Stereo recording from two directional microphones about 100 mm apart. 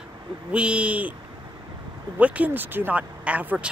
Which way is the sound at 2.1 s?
15° right (ahead or behind).